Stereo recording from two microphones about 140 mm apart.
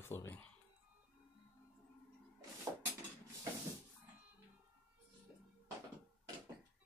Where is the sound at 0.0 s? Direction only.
15° left (ahead or behind).